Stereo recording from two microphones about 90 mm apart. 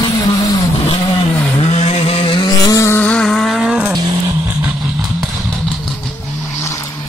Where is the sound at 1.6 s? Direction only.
90° left.